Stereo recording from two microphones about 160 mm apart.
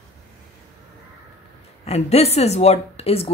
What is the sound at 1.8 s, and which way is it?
Speech, 40° left (ahead or behind).